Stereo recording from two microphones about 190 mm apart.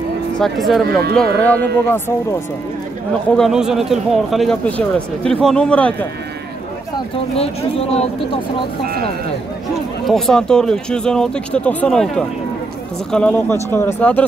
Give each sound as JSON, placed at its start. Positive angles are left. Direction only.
{"t": 0.4, "sound": "a man's voice", "side_deg": 0}
{"t": 3.3, "sound": "a man's voice", "side_deg": 0}
{"t": 7.3, "sound": "speech", "side_deg": 30}
{"t": 8.8, "sound": "speech", "side_deg": -55}
{"t": 10.0, "sound": "a man's voice", "side_deg": 0}